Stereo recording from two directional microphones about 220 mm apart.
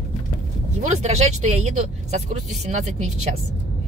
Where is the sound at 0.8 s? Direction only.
30° right (ahead or behind).